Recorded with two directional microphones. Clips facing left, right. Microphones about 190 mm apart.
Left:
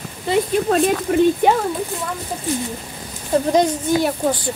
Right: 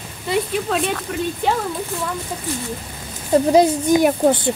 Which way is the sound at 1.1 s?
45° left (ahead or behind).